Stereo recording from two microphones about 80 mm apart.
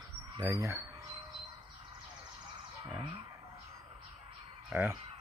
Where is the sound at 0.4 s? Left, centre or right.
Right.